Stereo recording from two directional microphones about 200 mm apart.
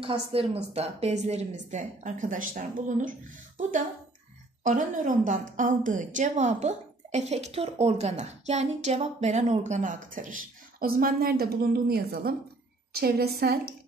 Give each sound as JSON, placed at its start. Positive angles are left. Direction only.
{"t": 0.3, "sound": "a woman's voice", "side_deg": -30}